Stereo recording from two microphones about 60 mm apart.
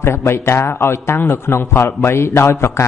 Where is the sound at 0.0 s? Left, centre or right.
Left.